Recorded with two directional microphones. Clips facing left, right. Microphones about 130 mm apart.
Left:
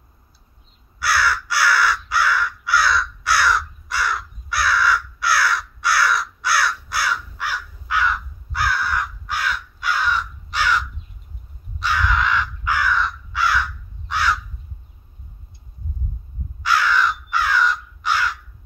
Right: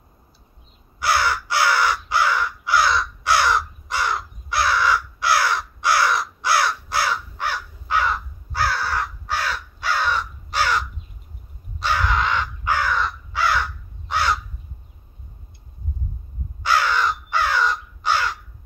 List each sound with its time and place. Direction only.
0.9 s crow: 20° right (ahead or behind)
16.6 s crow: 30° right (ahead or behind)